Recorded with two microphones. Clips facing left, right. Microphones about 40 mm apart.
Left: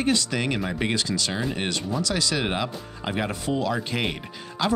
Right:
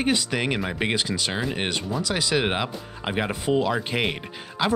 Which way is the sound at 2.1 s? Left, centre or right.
Centre.